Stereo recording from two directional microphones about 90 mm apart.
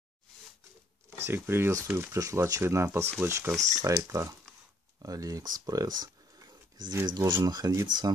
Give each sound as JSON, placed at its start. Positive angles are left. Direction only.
{"t": 1.1, "sound": "speech", "side_deg": -25}
{"t": 2.1, "sound": "speech", "side_deg": -40}